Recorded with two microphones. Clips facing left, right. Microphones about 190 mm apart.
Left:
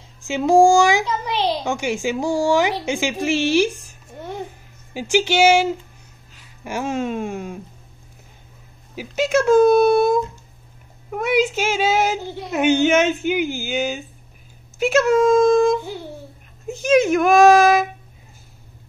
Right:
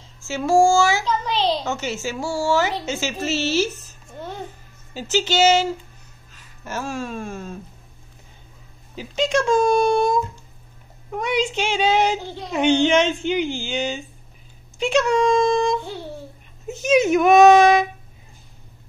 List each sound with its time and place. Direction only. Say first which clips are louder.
0.2 s a woman's voice: left 3 dB; 15° left (ahead or behind)
8.9 s a woman's voice: left 2 dB; 5° left (ahead or behind)
11.1 s speech: left 3 dB; 5° left (ahead or behind)